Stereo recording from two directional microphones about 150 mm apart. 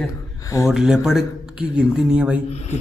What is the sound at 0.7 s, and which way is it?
Speech, 5° right (ahead or behind).